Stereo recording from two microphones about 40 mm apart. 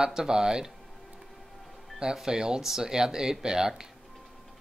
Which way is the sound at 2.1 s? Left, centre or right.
Centre.